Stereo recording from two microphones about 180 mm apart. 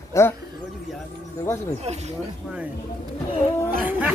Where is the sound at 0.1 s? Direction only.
15° left (ahead or behind).